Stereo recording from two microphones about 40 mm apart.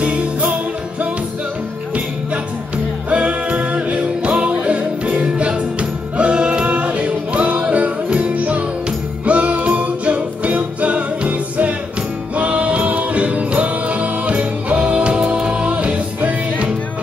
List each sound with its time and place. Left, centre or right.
0.0 s music: right
3.1 s music: right
9.2 s jingle bell: right
9.8 s music: right